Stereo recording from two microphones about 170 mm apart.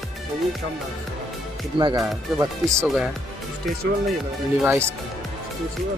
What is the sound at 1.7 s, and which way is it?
Speech, 30° right (ahead or behind).